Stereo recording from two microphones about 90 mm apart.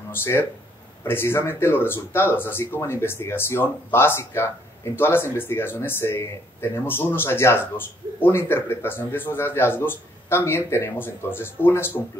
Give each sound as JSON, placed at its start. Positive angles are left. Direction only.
{"t": 0.1, "sound": "speech", "side_deg": 25}